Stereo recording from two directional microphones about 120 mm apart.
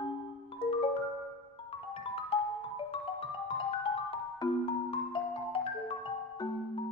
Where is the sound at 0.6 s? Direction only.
50° left (ahead or behind).